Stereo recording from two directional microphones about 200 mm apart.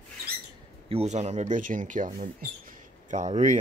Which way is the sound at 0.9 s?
30° right (ahead or behind).